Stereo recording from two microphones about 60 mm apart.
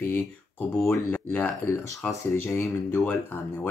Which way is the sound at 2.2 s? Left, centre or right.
Left.